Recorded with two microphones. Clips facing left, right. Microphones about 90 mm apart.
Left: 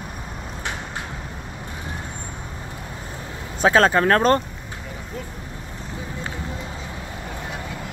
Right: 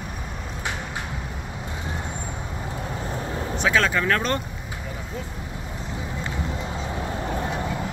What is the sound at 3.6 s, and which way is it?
Speech, 40° left (ahead or behind).